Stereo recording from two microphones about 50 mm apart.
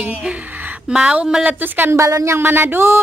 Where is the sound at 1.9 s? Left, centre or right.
Right.